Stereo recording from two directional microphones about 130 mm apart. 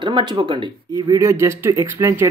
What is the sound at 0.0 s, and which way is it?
Speech, 35° right (ahead or behind).